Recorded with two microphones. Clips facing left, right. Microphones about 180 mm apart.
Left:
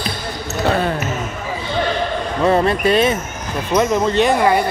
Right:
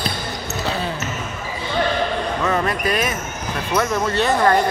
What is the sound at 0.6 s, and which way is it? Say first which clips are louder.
Speech: left 8 dB; 55° left (ahead or behind).